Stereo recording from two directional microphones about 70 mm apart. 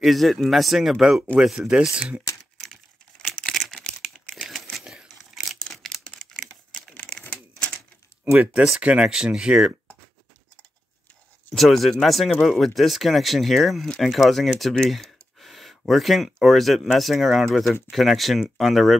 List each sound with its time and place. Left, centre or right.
0.0 s speech: centre
3.4 s a sound: centre
4.0 s crumpling: centre
4.8 s tearing: centre
7.1 s crumpling: centre
8.8 s speech: centre
11.5 s speech: centre